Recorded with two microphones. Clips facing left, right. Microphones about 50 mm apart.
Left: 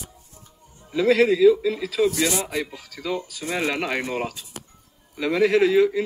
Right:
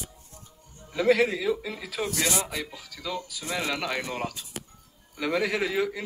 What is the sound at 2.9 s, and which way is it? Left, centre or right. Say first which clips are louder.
Speech: left 6 dB; left.